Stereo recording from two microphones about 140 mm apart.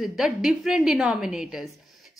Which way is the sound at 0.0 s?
5° right (ahead or behind).